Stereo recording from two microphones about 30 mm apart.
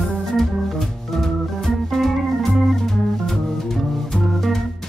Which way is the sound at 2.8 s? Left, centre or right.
Centre.